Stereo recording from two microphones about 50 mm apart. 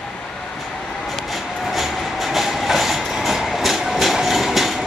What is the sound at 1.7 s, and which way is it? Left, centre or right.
Train, centre.